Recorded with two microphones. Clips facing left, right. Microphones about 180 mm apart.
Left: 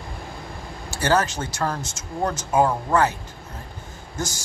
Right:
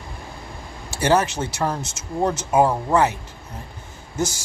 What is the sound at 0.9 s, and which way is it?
Speech, 20° right (ahead or behind).